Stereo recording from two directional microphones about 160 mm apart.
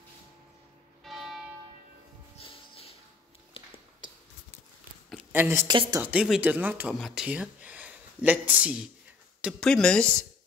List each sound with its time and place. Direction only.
1.0 s music: centre (ahead or behind)
2.3 s music: 40° left (ahead or behind)
3.6 s a sound: 35° left (ahead or behind)
5.3 s speech: 15° right (ahead or behind)
5.7 s speech: 25° right (ahead or behind)
6.0 s speech: 5° right (ahead or behind)
9.4 s speech: centre (ahead or behind)